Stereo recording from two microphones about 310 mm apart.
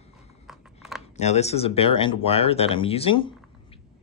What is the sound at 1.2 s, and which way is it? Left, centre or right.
Speech, left.